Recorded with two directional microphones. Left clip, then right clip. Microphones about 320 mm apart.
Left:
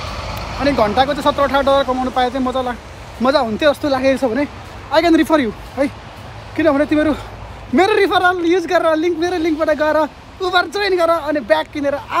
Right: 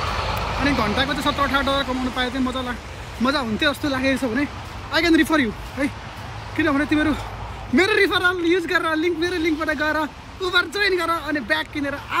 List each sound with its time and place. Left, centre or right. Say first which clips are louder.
0.3 s vehicle: right 2 dB; centre
0.6 s a man's voice: left 8 dB; centre